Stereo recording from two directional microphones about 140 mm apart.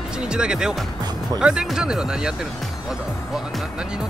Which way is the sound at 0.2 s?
5° right (ahead or behind).